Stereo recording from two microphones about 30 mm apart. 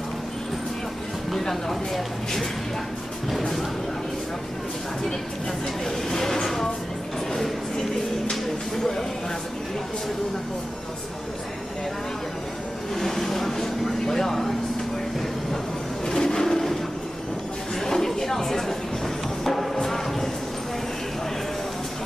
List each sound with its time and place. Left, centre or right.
1.3 s speech: centre
3.3 s speech: centre
5.9 s speech: centre
6.4 s a sound: centre
8.7 s speech: centre
13.0 s speech: centre
16.1 s a sound: centre
17.7 s a sound: centre
19.4 s music: centre